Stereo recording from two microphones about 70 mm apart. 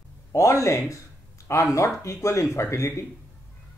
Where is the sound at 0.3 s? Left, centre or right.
Left.